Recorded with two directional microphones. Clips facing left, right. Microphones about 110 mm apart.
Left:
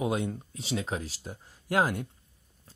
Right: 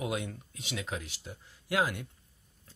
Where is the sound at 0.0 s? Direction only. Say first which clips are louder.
Left 5 dB; 30° left (ahead or behind).